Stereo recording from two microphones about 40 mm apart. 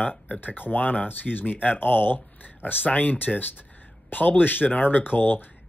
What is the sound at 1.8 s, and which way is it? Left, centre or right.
Speech, left.